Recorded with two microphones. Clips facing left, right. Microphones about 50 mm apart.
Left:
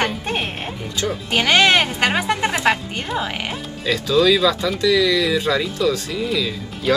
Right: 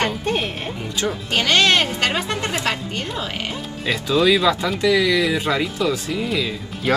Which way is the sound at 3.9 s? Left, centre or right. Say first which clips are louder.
Left 1 dB; right.